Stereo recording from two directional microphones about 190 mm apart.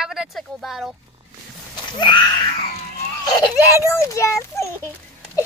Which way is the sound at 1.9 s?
25° left (ahead or behind).